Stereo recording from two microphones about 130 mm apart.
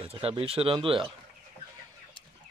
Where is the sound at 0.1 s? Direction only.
50° right (ahead or behind).